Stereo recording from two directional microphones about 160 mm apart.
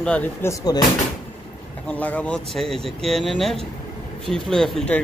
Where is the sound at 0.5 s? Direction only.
25° left (ahead or behind).